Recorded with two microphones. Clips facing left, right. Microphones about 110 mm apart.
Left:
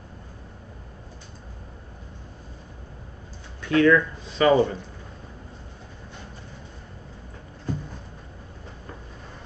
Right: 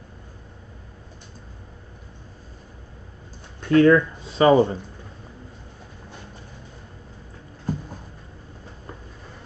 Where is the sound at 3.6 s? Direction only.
35° right (ahead or behind).